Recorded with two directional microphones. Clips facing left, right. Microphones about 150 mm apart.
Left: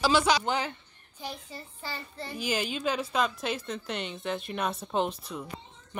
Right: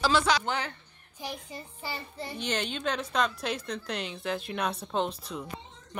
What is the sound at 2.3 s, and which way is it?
A woman's voice, 5° left (ahead or behind).